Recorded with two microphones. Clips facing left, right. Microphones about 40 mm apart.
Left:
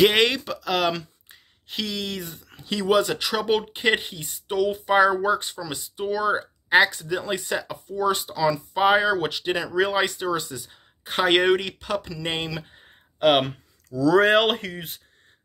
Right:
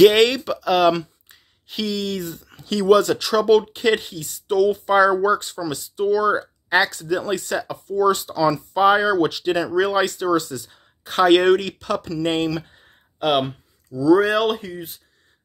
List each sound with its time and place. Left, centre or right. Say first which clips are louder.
0.0 s speech: right 5 dB; centre
9.8 s speech: right 4 dB; centre
13.4 s speech: right 2 dB; left
14.2 s speech: left 1 dB; left